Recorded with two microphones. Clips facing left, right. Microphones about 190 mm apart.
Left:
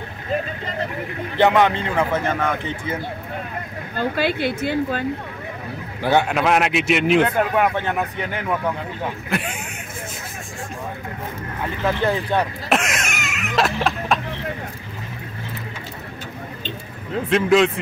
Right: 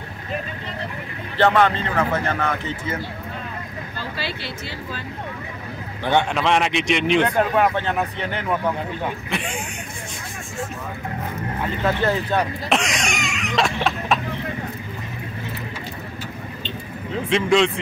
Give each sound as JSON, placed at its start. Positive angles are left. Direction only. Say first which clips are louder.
{"t": 1.4, "sound": "a man's voice", "louder": "left 1 dB", "side_deg": 15}
{"t": 3.9, "sound": "speech", "louder": "left 10 dB", "side_deg": 50}
{"t": 6.0, "sound": "a man's voice", "louder": "left 2 dB", "side_deg": 5}
{"t": 12.0, "sound": "a man's voice", "louder": "even", "side_deg": 15}
{"t": 12.6, "sound": "a sound", "louder": "even", "side_deg": 0}
{"t": 17.3, "sound": "speech", "louder": "left 2 dB", "side_deg": 0}